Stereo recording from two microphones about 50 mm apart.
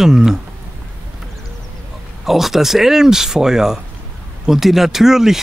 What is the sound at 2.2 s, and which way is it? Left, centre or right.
Speech, centre.